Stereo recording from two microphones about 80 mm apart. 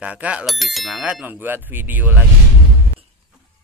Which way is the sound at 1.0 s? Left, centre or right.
Centre.